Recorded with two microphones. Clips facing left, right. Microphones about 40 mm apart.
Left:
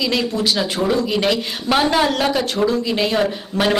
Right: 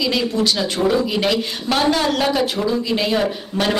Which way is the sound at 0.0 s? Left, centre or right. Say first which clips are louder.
Right 1 dB; centre.